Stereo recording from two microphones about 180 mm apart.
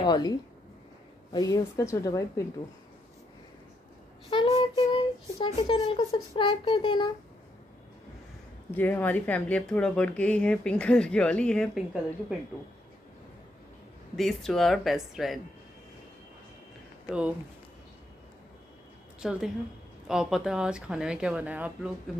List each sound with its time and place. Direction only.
0.0 s a woman's voice: 25° left (ahead or behind)
4.3 s a sound: 25° left (ahead or behind)
6.1 s a woman's voice: 25° left (ahead or behind)
8.7 s speech: 10° left (ahead or behind)
14.1 s speech: centre (ahead or behind)
19.2 s speech: centre (ahead or behind)